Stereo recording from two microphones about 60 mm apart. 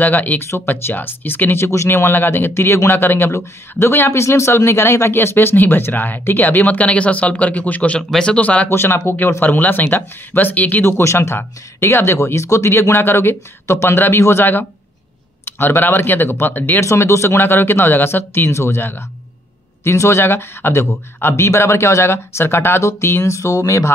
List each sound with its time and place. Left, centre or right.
0.0 s speech: left
8.1 s speech: centre
8.4 s speech: left
8.6 s speech: left
10.8 s speech: left
16.8 s speech: left